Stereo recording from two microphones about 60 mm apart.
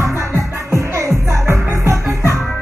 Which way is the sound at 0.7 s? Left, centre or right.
Right.